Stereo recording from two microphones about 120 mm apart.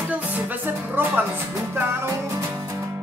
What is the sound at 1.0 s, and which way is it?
Music, 15° right (ahead or behind).